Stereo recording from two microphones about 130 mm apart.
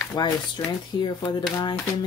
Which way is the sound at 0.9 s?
35° left (ahead or behind).